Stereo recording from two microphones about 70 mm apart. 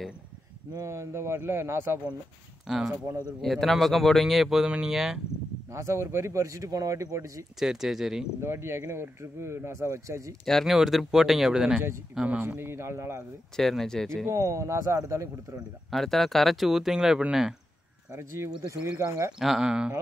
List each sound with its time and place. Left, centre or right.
0.8 s speech: right
2.6 s speech: centre
5.7 s speech: right
7.5 s speech: centre
8.4 s speech: right
10.4 s speech: centre
12.2 s speech: right
13.6 s speech: centre
14.2 s speech: right
15.9 s speech: centre
18.1 s speech: right
19.3 s speech: centre